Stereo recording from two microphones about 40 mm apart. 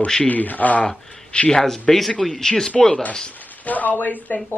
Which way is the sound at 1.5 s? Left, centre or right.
Centre.